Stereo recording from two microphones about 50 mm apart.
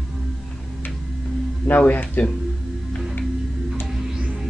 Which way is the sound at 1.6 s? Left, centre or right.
Left.